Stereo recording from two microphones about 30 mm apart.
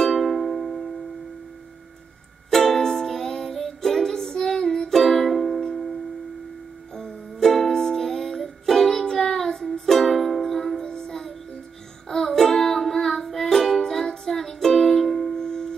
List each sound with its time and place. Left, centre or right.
0.0 s music: centre
2.5 s music: centre
4.9 s music: centre
6.9 s music: centre
10.8 s child singing: left
12.1 s music: centre
15.3 s music: centre